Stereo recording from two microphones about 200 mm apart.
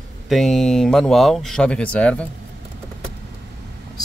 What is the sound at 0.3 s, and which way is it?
Speech, centre (ahead or behind).